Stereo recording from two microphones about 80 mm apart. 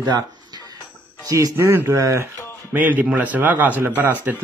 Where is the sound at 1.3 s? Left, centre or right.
Right.